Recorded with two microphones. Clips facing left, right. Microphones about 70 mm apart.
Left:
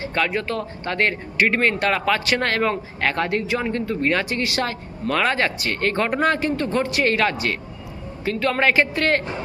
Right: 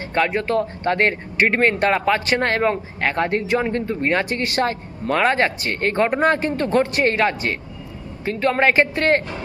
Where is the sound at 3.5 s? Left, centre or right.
Right.